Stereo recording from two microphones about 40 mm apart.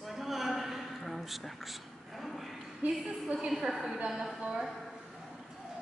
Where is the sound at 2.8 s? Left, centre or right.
Right.